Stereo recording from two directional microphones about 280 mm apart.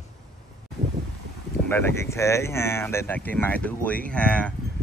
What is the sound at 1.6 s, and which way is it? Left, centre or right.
Speech, centre.